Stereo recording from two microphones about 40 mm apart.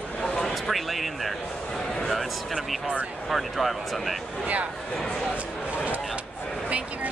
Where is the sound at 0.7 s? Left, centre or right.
Centre.